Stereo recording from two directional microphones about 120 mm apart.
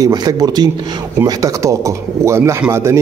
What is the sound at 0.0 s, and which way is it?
Speech, 30° right (ahead or behind).